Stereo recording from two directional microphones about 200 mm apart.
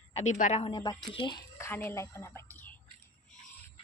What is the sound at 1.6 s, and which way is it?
A woman's voice, 10° left (ahead or behind).